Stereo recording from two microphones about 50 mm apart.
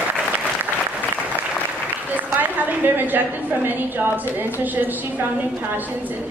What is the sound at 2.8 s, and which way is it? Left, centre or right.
A woman's voice, right.